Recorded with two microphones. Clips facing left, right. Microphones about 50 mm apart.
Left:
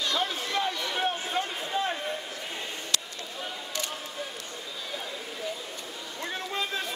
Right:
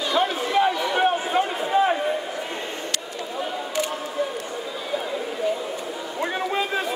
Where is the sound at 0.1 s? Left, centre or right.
Centre.